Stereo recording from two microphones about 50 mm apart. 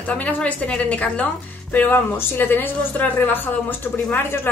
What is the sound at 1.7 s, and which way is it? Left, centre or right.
A woman's voice, left.